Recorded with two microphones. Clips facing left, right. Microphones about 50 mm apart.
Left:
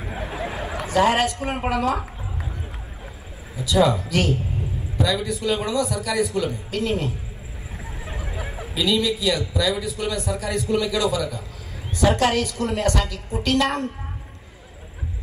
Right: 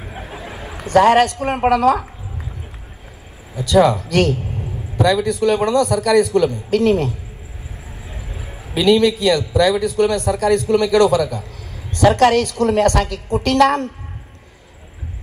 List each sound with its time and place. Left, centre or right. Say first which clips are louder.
0.1 s a sound: left 4 dB; left
0.8 s a man's voice: right 7 dB; right
3.5 s a man's voice: right 5 dB; right
8.1 s vehicle: left 3 dB; left
8.7 s a man's voice: right 8 dB; right